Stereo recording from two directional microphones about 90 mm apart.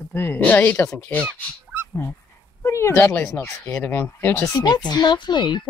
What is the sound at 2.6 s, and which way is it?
Speech, 30° left (ahead or behind).